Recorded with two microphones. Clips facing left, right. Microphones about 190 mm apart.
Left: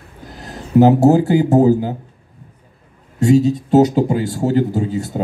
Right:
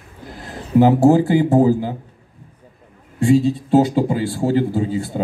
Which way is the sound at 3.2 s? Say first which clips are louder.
Left 2 dB; 40° left (ahead or behind).